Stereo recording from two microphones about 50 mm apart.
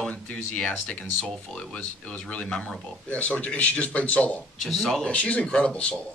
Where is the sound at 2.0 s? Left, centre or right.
Left.